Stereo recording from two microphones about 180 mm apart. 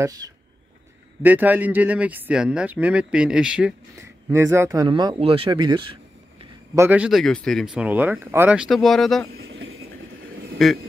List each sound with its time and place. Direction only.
0.0 s speech: 20° right (ahead or behind)
1.2 s speech: 10° right (ahead or behind)
4.3 s speech: 15° right (ahead or behind)
6.7 s speech: 10° right (ahead or behind)
9.3 s vehicle: 90° right
10.6 s speech: centre (ahead or behind)